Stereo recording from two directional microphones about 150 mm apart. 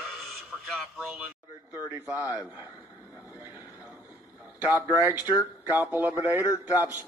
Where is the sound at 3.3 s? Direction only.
15° right (ahead or behind).